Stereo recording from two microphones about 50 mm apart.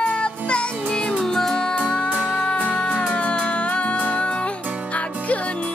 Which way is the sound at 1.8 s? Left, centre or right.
Left.